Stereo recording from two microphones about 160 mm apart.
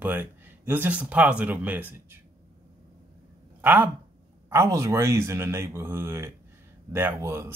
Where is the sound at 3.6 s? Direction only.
10° right (ahead or behind).